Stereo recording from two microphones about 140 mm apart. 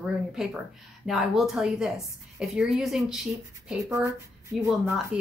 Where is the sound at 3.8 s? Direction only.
20° right (ahead or behind).